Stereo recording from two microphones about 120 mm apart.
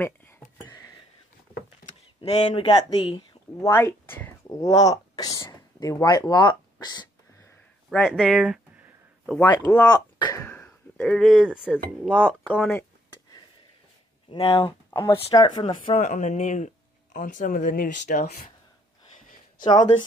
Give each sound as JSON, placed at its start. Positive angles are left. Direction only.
{"t": 0.0, "sound": "a sound", "side_deg": 15}
{"t": 2.2, "sound": "speech", "side_deg": 60}
{"t": 3.0, "sound": "speech", "side_deg": 35}
{"t": 3.7, "sound": "speech", "side_deg": 20}
{"t": 8.0, "sound": "a sound", "side_deg": 0}
{"t": 9.8, "sound": "speech", "side_deg": 35}
{"t": 10.4, "sound": "a sound", "side_deg": 20}
{"t": 11.0, "sound": "speech", "side_deg": 5}
{"t": 12.1, "sound": "speech", "side_deg": 10}
{"t": 14.3, "sound": "speech", "side_deg": 50}
{"t": 14.9, "sound": "speech", "side_deg": 30}
{"t": 15.6, "sound": "speech", "side_deg": 50}
{"t": 16.0, "sound": "speech", "side_deg": 85}
{"t": 19.6, "sound": "speech", "side_deg": 35}